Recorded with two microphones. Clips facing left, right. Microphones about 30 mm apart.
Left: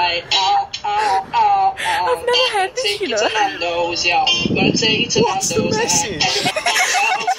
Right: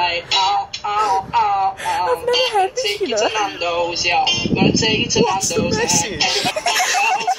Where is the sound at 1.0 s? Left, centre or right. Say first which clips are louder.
Even; left.